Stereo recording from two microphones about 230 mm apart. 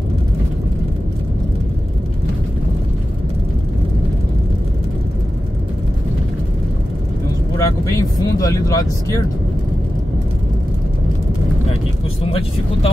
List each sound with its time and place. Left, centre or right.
7.5 s vehicle: centre
12.2 s speech: left